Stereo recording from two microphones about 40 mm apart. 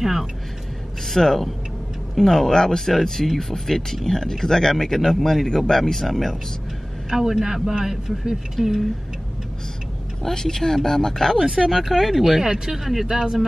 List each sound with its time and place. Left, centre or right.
0.0 s speech: centre
1.0 s speech: centre
2.9 s speech: centre
7.1 s speech: centre
10.2 s speech: centre